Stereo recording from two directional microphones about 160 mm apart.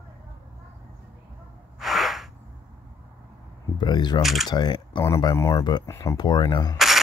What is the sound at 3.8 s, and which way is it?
Speech, 25° left (ahead or behind).